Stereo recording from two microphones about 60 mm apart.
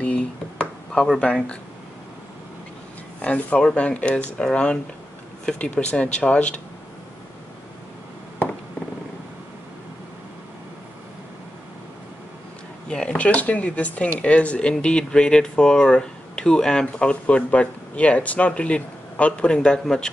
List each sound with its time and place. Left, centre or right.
0.0 s a sound: centre
1.2 s speech: centre
3.2 s speech: left
12.8 s speech: centre